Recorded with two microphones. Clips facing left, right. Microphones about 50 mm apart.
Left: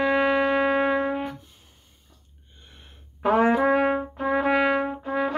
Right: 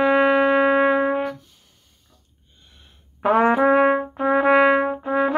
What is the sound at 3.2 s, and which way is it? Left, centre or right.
Brass instrument, centre.